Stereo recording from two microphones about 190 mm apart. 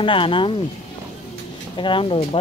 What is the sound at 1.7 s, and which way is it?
Speech, 25° left (ahead or behind).